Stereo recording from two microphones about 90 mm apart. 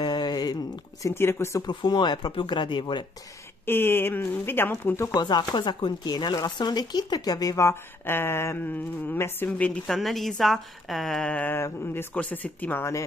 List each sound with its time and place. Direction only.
0.0 s a sound: 50° left (ahead or behind)
1.0 s speech: 30° left (ahead or behind)
1.7 s speech: 55° left (ahead or behind)
3.6 s speech: 25° left (ahead or behind)
5.1 s speech: 55° left (ahead or behind); by 9.5 s 25° left (ahead or behind)
9.8 s a woman's voice: centre (ahead or behind)
11.5 s speech: 25° left (ahead or behind)